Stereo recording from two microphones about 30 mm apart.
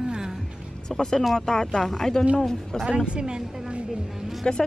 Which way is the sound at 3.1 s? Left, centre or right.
Right.